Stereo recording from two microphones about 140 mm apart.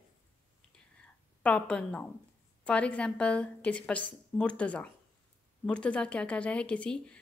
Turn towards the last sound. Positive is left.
turn(degrees=10)  # may be behind; listen again after turning